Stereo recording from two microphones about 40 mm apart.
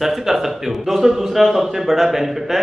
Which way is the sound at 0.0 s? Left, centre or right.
Centre.